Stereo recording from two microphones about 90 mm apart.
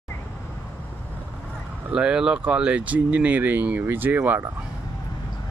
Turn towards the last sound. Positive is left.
turn(degrees=-20)  # may be behind; listen again after turning